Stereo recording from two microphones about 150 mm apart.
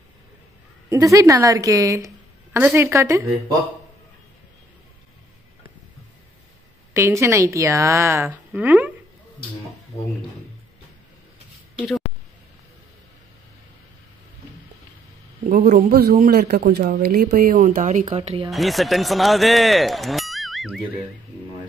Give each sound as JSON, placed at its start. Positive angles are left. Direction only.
{"t": 0.8, "sound": "a woman's voice", "side_deg": -20}
{"t": 6.9, "sound": "a woman's voice", "side_deg": -20}
{"t": 15.4, "sound": "a man's voice", "side_deg": -65}
{"t": 18.5, "sound": "speech", "side_deg": 0}